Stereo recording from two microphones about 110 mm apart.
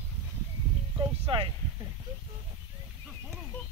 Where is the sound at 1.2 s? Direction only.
55° right (ahead or behind).